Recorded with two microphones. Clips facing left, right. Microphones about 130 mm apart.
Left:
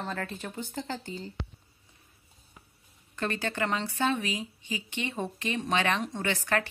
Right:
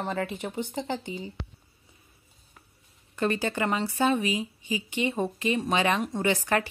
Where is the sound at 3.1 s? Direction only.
10° right (ahead or behind).